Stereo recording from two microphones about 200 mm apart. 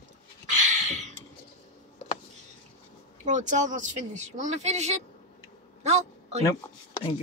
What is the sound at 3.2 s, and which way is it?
A man's voice, 40° right (ahead or behind).